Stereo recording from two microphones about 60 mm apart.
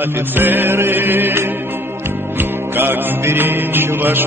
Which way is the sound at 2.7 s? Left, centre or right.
Right.